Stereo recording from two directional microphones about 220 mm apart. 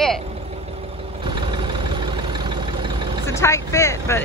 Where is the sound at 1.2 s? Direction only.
20° right (ahead or behind).